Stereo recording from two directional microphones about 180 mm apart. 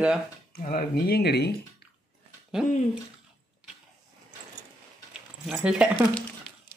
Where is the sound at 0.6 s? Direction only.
55° left (ahead or behind).